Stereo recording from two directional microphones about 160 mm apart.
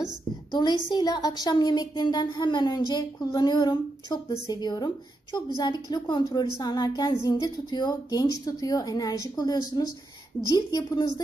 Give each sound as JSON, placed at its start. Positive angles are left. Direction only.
{"t": 0.5, "sound": "a woman's voice", "side_deg": 25}